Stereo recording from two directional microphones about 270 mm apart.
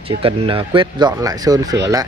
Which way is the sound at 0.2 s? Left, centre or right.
Centre.